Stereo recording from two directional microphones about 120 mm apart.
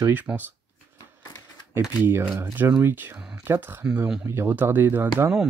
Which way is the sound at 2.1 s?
20° right (ahead or behind).